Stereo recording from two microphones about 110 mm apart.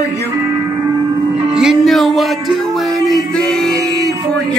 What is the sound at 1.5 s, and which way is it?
Music, centre (ahead or behind).